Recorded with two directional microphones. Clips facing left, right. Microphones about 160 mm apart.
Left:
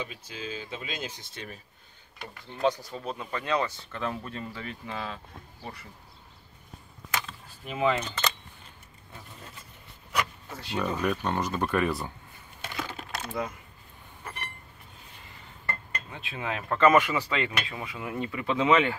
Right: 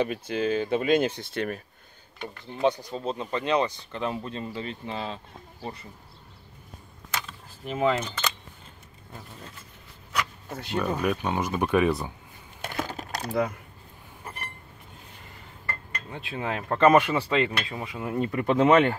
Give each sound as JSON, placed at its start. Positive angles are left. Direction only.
{"t": 0.0, "sound": "speech", "side_deg": -60}
{"t": 2.6, "sound": "speech", "side_deg": -20}
{"t": 7.2, "sound": "speech", "side_deg": -5}
{"t": 10.8, "sound": "speech", "side_deg": -5}
{"t": 12.6, "sound": "a sound", "side_deg": -45}
{"t": 16.1, "sound": "speech", "side_deg": -45}
{"t": 16.7, "sound": "speech", "side_deg": -35}